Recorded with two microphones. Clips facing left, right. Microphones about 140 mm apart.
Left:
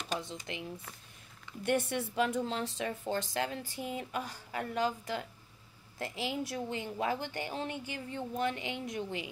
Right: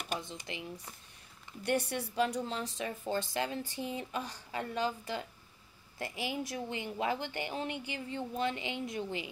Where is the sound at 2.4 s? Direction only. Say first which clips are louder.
Left 2 dB; centre (ahead or behind).